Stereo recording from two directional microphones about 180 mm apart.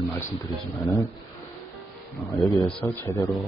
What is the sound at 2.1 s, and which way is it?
Speech, centre (ahead or behind).